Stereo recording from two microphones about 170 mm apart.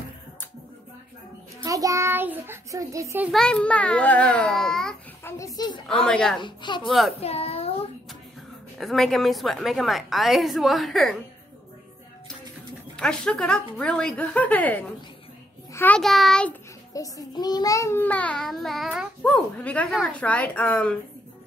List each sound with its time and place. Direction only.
1.6 s a child's voice: 20° right (ahead or behind)
3.3 s a child's voice: 5° left (ahead or behind)
5.2 s a woman's voice: 20° left (ahead or behind)
6.0 s a woman's voice: 5° left (ahead or behind)
6.4 s a woman's voice: 25° left (ahead or behind)
6.9 s a woman's voice: centre (ahead or behind)
7.2 s a child's voice: 35° left (ahead or behind)
8.7 s a woman's voice: centre (ahead or behind)
12.9 s a woman's voice: 5° left (ahead or behind)
16.9 s a child's voice: 20° left (ahead or behind)